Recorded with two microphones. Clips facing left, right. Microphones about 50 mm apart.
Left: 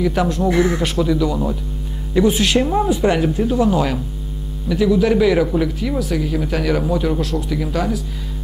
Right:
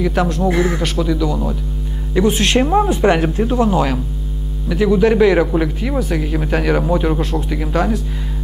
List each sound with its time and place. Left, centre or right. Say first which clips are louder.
0.0 s speech: right 1 dB; centre
2.6 s speech: right 3 dB; centre
2.9 s speech: right 2 dB; right
3.3 s speech: right 1 dB; centre